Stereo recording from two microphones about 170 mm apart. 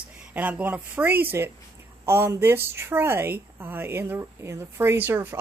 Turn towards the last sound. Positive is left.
turn(degrees=-10)  # may be behind; listen again after turning